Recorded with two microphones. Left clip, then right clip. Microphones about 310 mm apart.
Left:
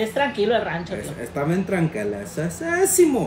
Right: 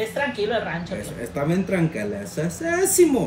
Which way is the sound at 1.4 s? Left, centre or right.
Centre.